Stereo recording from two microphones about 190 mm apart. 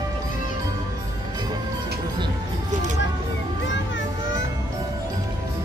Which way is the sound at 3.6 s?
75° left (ahead or behind).